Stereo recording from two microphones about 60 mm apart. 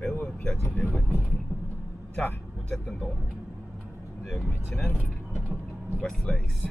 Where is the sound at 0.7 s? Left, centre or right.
Left.